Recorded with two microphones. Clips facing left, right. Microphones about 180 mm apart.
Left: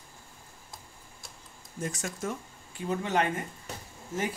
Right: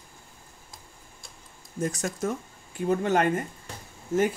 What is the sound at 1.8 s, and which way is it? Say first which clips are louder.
Speech: right 6 dB; 40° right (ahead or behind).